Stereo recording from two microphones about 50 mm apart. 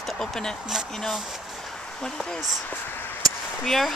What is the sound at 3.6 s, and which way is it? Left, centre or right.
Speech, centre.